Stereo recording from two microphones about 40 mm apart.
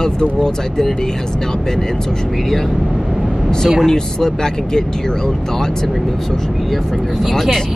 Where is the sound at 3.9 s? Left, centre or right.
Centre.